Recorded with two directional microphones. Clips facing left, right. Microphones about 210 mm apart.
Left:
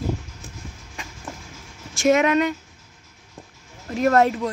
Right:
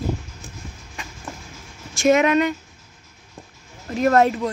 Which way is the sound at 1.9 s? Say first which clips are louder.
Right 1 dB; centre (ahead or behind).